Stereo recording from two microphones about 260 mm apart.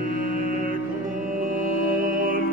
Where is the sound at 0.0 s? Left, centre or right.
Right.